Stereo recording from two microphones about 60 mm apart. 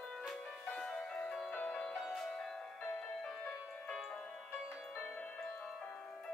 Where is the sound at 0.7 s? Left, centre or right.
Centre.